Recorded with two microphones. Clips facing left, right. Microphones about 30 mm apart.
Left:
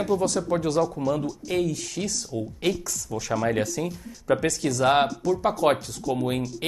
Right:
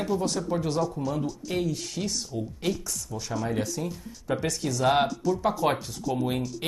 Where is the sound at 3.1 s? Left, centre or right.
Left.